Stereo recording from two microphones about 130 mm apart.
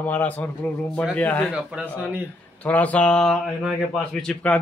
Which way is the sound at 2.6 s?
10° left (ahead or behind).